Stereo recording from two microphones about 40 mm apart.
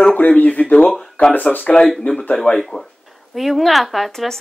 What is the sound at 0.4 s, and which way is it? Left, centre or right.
Speech, left.